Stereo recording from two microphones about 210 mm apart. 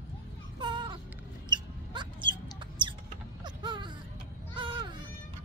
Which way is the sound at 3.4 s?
20° right (ahead or behind).